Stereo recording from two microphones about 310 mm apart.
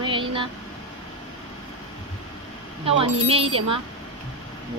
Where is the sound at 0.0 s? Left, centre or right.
Centre.